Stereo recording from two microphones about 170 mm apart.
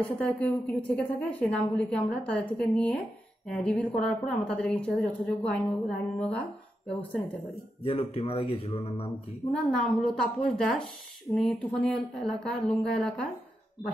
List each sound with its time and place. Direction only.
0.0 s a woman's voice: 10° left (ahead or behind)
7.8 s speech: 35° left (ahead or behind)
9.7 s a woman's voice: 5° left (ahead or behind)